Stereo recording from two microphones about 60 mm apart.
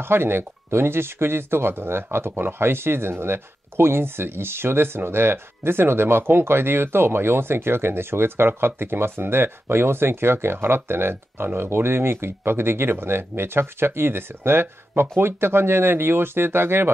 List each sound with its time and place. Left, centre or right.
0.0 s speech: right